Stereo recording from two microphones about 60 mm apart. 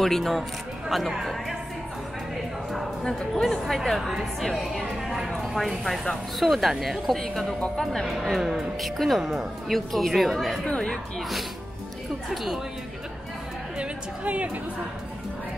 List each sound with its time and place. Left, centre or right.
0.0 s speech: centre
3.0 s a woman's voice: centre
13.7 s a woman's voice: right